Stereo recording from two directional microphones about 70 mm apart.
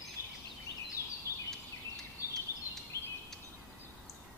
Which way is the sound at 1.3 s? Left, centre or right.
Right.